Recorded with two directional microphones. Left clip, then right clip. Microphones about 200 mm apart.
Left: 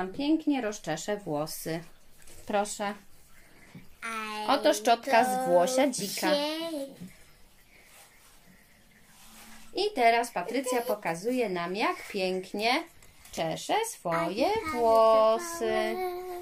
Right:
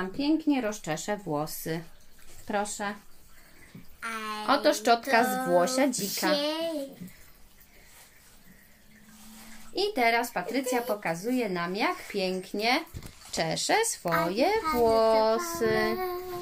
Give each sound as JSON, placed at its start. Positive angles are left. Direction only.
{"t": 0.0, "sound": "speech", "side_deg": -10}
{"t": 2.4, "sound": "speech", "side_deg": 5}
{"t": 4.0, "sound": "speech", "side_deg": 0}
{"t": 9.8, "sound": "speech", "side_deg": -10}
{"t": 13.3, "sound": "a child's voice", "side_deg": -30}
{"t": 14.0, "sound": "a child's voice", "side_deg": -15}